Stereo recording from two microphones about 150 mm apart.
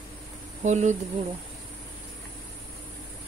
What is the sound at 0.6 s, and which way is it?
Speech, 50° right (ahead or behind).